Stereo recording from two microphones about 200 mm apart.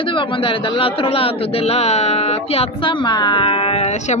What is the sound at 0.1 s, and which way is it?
Speech, 25° left (ahead or behind).